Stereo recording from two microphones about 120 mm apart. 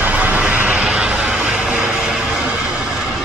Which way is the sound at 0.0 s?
10° right (ahead or behind).